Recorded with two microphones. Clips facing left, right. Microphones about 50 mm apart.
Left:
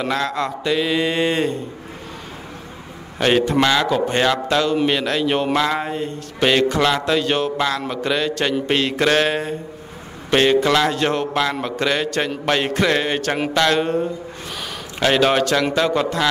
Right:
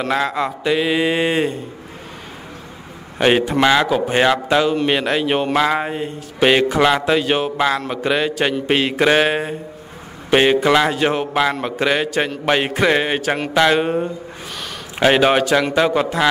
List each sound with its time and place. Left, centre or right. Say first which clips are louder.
0.1 s a man's voice: right 2 dB; centre
3.2 s a man's voice: right 1 dB; centre